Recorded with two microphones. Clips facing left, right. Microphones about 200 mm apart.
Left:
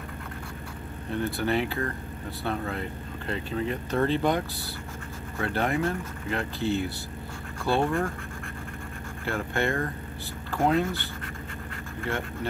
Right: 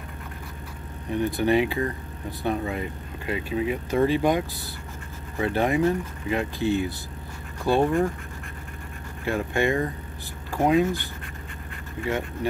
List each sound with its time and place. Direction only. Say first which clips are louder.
1.1 s speech: right 5 dB; 15° right (ahead or behind)
9.2 s speech: right 4 dB; 15° right (ahead or behind)